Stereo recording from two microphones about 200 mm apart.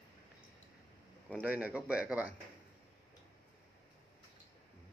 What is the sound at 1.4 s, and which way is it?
Speech, 5° right (ahead or behind).